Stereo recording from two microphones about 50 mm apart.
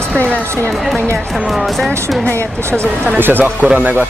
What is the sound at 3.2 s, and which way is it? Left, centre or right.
Speech, right.